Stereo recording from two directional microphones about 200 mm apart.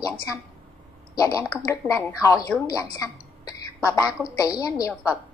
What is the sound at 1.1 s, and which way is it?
A child's voice, 15° left (ahead or behind).